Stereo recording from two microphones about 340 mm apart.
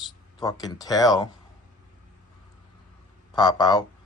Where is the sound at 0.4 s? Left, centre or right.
Centre.